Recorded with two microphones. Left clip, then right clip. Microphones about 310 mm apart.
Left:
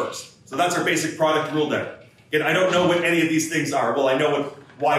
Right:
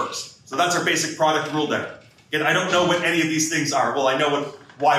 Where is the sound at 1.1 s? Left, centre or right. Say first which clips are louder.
Even; centre.